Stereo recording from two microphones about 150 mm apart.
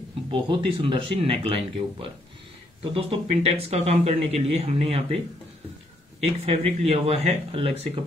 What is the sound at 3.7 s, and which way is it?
Speech, 45° right (ahead or behind).